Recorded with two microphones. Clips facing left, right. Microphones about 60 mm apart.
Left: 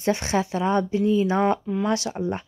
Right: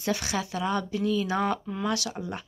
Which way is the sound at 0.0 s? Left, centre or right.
Left.